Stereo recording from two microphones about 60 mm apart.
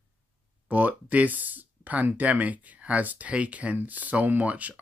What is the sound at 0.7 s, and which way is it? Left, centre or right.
Speech, right.